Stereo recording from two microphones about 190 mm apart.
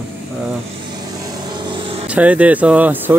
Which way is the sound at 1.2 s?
20° right (ahead or behind).